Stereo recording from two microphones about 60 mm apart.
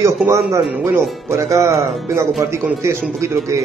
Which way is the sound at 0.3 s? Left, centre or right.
Right.